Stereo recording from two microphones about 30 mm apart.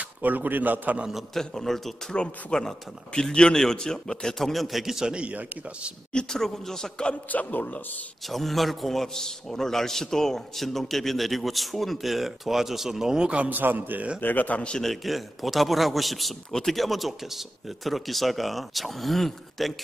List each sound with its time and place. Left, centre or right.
0.2 s a man's voice: right
1.3 s a man's voice: centre
2.5 s speech: left
3.7 s a man's voice: centre
4.4 s a man's voice: centre
4.8 s a man's voice: centre
6.3 s a man's voice: centre
7.2 s a man's voice: left
8.3 s a man's voice: centre
13.2 s a man's voice: right
13.5 s a man's voice: right
14.2 s a man's voice: left
14.8 s a man's voice: centre